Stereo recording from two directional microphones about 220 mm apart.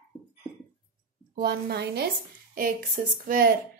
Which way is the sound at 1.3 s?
45° right (ahead or behind).